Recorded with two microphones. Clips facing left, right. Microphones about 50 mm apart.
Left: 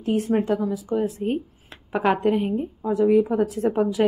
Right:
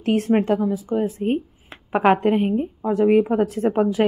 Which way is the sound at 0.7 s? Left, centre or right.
Right.